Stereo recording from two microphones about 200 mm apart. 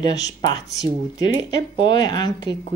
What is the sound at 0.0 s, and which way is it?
Speech, 20° left (ahead or behind).